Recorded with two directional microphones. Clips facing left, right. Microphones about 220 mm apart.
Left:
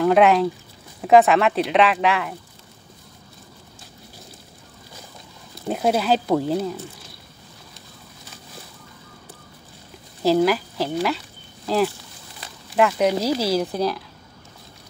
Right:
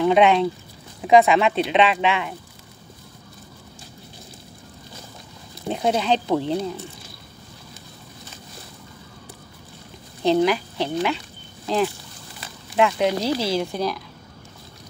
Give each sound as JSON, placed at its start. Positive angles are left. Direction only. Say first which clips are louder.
{"t": 0.0, "sound": "speech", "louder": "left 1 dB", "side_deg": 0}
{"t": 5.5, "sound": "speech", "louder": "left 1 dB", "side_deg": 5}
{"t": 10.2, "sound": "speech", "louder": "left 1 dB", "side_deg": 5}